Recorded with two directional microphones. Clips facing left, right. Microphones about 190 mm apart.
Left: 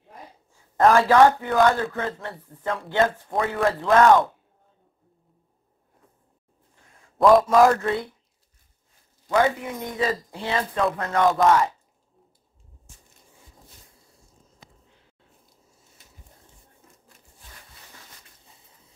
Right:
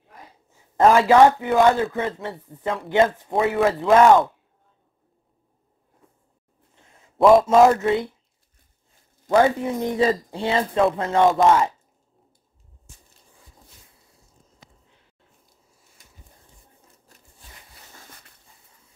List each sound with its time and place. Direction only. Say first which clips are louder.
0.6 s speech: right 2 dB; 20° right (ahead or behind)
6.7 s a sound: right 2 dB; 25° right (ahead or behind)
7.4 s speech: right 2 dB; 25° right (ahead or behind)
9.3 s speech: right 4 dB; 30° right (ahead or behind)